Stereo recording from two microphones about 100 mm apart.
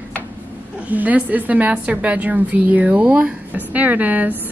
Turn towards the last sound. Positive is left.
turn(degrees=-15)  # may be behind; listen again after turning